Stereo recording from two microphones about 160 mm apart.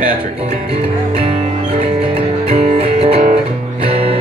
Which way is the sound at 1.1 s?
35° right (ahead or behind).